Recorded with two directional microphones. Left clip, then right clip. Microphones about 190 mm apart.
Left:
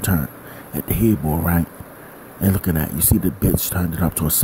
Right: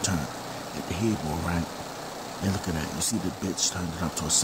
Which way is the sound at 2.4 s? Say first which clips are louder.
Left 9 dB; 35° left (ahead or behind).